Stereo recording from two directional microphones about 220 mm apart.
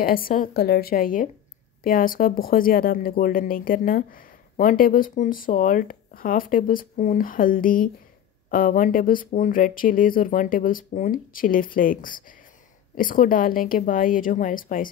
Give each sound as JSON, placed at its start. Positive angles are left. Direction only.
{"t": 0.0, "sound": "speech", "side_deg": 40}